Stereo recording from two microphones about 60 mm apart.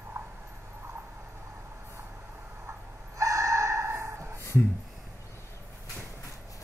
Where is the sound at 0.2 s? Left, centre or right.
Right.